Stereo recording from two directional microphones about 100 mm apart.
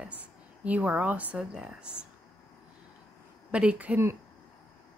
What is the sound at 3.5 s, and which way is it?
Speech, 10° right (ahead or behind).